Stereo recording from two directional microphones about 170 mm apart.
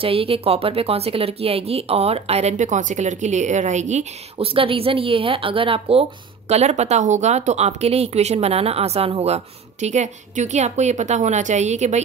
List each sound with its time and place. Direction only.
0.0 s speech: 35° right (ahead or behind)